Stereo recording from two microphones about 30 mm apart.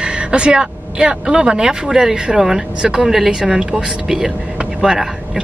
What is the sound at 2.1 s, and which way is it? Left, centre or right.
Speech, right.